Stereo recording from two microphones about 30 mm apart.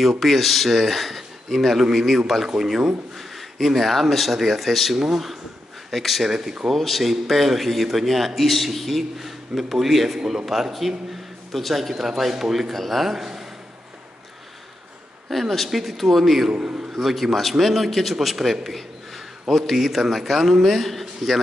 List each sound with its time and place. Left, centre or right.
0.0 s speech: centre
2.4 s speech: centre
3.2 s speech: centre
6.3 s speech: centre
6.7 s a man's voice: centre
10.1 s speech: centre
10.4 s speech: centre
12.0 s a man's voice: centre
12.7 s a man's voice: centre
15.2 s speech: centre
16.5 s a man's voice: right
16.9 s a man's voice: centre